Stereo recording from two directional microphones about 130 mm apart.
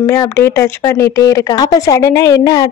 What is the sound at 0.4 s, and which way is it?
Speech, 20° left (ahead or behind).